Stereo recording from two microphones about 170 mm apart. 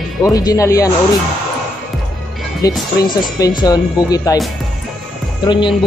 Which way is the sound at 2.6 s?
20° left (ahead or behind).